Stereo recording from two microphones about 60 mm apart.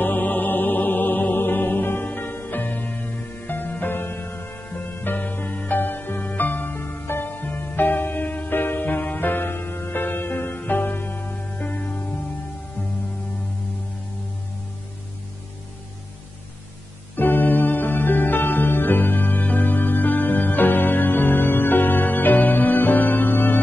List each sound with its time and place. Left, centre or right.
0.0 s music: left
17.1 s music: left